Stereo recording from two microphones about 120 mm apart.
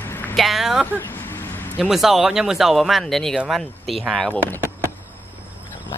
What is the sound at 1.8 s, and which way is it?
Speech, centre (ahead or behind).